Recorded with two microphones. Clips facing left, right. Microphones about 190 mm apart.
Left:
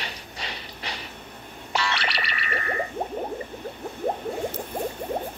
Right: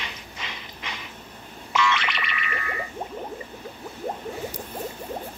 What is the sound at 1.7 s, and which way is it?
Music, 35° left (ahead or behind).